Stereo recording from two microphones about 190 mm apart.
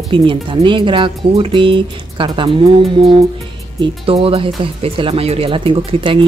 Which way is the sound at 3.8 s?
30° right (ahead or behind).